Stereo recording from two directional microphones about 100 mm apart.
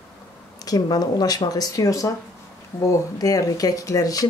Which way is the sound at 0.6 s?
40° left (ahead or behind).